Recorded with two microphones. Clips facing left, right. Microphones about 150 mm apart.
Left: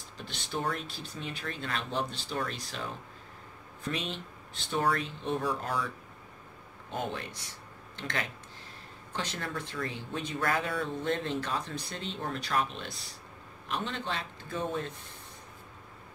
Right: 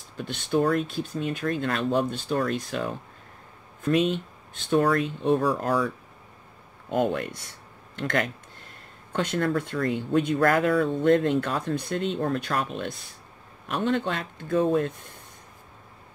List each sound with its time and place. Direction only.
0.2 s speech: 55° right (ahead or behind)
6.9 s speech: 50° right (ahead or behind)